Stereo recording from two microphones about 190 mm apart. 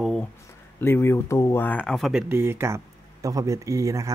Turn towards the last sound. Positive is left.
turn(degrees=-15)  # may be behind; listen again after turning